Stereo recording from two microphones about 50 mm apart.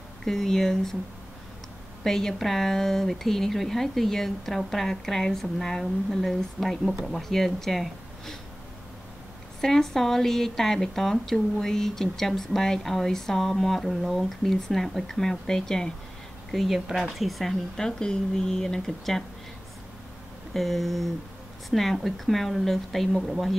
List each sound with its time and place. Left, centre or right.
0.2 s speech: centre
2.0 s a woman's voice: centre
9.6 s a woman's voice: centre
16.5 s a woman's voice: centre
20.5 s a woman's voice: centre